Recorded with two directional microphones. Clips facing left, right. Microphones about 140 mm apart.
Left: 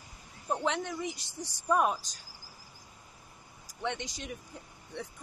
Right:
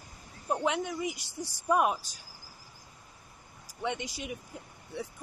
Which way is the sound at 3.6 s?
10° right (ahead or behind).